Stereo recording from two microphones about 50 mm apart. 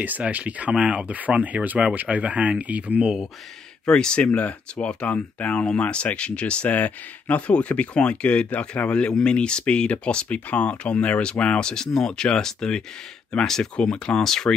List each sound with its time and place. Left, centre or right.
0.3 s speech: right
3.8 s speech: centre
4.2 s speech: left; by 14.5 s centre